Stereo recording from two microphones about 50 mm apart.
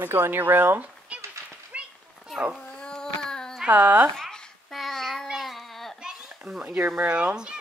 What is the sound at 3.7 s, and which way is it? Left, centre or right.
Speech, right.